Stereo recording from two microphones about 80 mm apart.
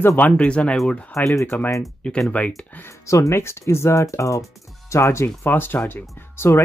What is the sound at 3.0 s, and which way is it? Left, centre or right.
Speech, left.